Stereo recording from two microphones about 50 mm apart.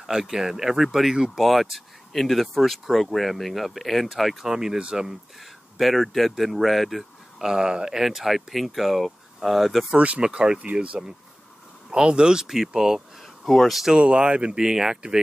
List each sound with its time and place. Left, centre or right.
0.0 s speech: centre
1.1 s speech: centre
1.4 s speech: centre
4.5 s speech: centre
5.4 s speech: centre
9.9 s speech: right; by 13.0 s centre
13.5 s speech: centre
13.9 s speech: right